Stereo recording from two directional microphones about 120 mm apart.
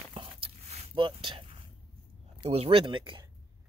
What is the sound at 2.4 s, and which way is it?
Speech, 55° right (ahead or behind).